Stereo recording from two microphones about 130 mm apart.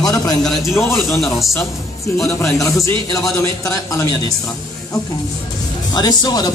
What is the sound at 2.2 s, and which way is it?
A man's voice, 25° left (ahead or behind).